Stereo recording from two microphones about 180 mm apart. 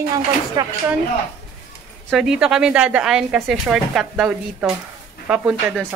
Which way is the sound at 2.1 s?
5° right (ahead or behind).